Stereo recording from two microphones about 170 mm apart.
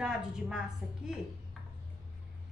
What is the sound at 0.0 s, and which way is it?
A woman's voice, 5° right (ahead or behind).